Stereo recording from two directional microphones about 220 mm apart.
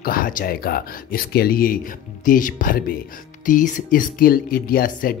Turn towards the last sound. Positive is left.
turn(degrees=40)  # may be behind; listen again after turning